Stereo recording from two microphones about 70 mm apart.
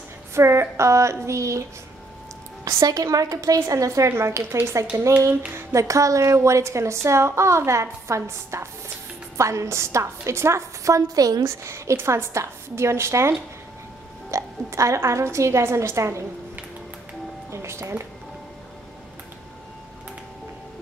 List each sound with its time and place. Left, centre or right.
0.3 s a woman's voice: right
2.9 s a woman's voice: right
4.1 s a woman's voice: right
11.4 s a woman's voice: right
14.3 s a woman's voice: right
17.5 s speech: right